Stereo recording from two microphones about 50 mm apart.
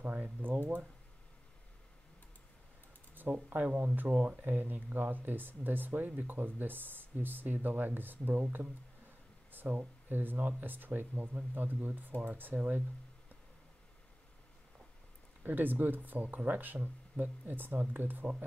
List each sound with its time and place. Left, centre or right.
0.0 s speech: right
3.2 s speech: right
15.4 s speech: right